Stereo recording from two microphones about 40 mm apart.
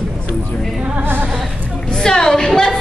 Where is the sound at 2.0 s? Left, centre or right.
Centre.